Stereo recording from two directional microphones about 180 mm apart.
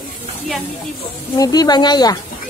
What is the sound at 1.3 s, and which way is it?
Speech, 20° left (ahead or behind).